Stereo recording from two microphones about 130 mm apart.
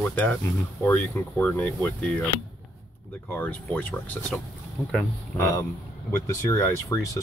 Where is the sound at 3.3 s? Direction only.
15° left (ahead or behind).